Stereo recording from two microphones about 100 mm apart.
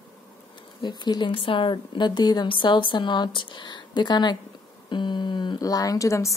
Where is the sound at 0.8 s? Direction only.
45° left (ahead or behind).